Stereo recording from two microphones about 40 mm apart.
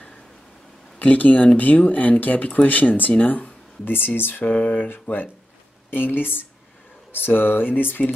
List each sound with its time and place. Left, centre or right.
0.9 s speech: left
3.8 s speech: left
4.5 s speech: left
5.0 s speech: left